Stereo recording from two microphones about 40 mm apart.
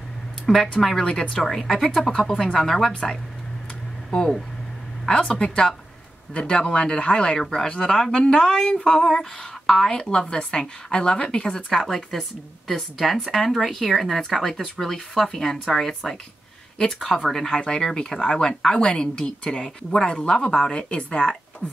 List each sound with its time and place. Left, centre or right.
0.5 s speech: centre
4.1 s a woman's voice: centre
7.3 s speech: centre
7.6 s a woman's voice: left
9.0 s a woman's voice: centre
17.0 s speech: centre
17.6 s a woman's voice: centre
20.6 s a woman's voice: left